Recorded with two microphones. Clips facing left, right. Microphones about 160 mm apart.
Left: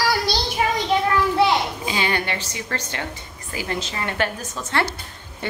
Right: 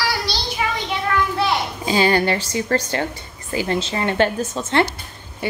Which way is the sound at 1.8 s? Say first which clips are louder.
Right 7 dB; 35° right (ahead or behind).